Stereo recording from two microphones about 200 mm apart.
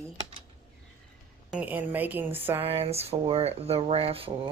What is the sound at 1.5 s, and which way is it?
A woman's voice, 10° right (ahead or behind).